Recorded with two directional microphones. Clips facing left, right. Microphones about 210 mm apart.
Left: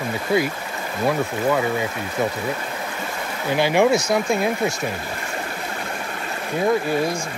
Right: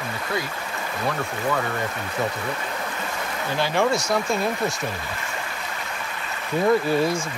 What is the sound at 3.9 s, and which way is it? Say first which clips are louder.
Speech: left 4 dB; centre (ahead or behind).